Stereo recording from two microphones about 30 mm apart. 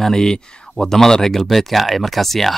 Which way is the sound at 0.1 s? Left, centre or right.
Centre.